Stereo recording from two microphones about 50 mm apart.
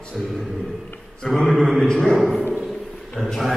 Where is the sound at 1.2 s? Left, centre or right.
Centre.